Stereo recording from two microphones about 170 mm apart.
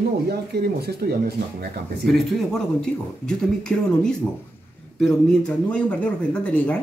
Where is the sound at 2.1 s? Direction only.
Centre (ahead or behind).